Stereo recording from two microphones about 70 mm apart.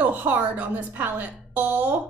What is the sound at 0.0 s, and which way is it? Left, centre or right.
A woman's voice, right.